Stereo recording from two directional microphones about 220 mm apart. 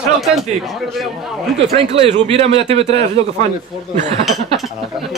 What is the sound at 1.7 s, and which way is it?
Speech, 25° right (ahead or behind).